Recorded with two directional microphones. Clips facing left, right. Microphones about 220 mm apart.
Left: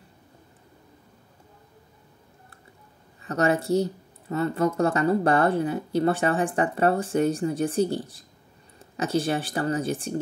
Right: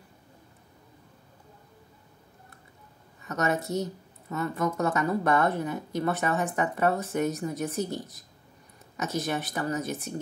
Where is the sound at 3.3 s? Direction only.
30° left (ahead or behind).